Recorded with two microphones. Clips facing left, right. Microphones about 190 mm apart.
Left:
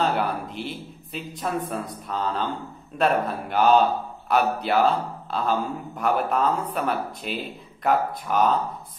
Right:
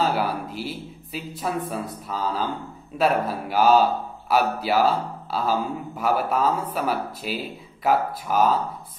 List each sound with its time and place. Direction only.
0.0 s speech: 5° right (ahead or behind)